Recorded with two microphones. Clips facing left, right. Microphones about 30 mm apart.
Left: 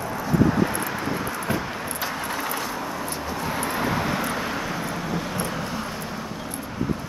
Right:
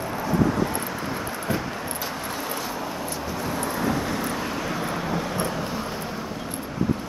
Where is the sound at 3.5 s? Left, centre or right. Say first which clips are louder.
Even; left; by 6.3 s centre.